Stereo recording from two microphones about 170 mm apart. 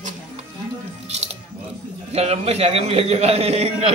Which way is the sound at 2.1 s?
40° right (ahead or behind).